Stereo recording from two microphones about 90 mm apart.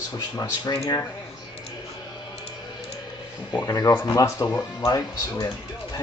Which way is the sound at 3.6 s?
40° left (ahead or behind).